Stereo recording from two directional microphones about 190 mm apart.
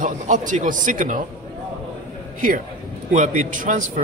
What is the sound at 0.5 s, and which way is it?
Speech, 40° right (ahead or behind).